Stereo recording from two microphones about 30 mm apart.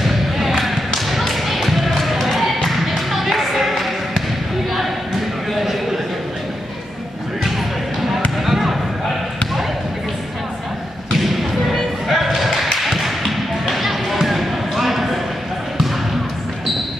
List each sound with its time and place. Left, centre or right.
0.0 s thump: centre
3.1 s music: centre
8.5 s basketball bounce: centre
12.1 s basketball bounce: centre